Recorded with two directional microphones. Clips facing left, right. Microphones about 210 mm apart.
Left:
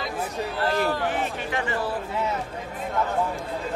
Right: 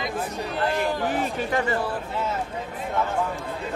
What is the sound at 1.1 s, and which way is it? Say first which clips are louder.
Speech: right 3 dB; 40° right (ahead or behind).